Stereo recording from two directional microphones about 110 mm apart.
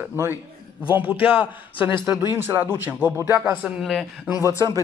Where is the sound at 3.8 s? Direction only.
Centre (ahead or behind).